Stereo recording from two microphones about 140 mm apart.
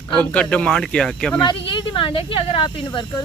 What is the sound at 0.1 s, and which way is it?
Speech, 5° left (ahead or behind).